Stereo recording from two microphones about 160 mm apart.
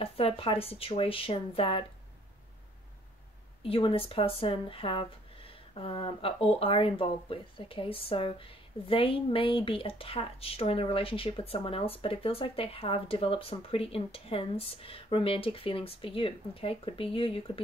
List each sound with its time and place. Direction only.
0.0 s speech: 35° left (ahead or behind)
3.6 s speech: 35° left (ahead or behind)